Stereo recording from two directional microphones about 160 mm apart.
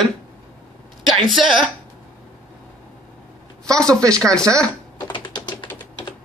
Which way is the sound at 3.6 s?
5° left (ahead or behind).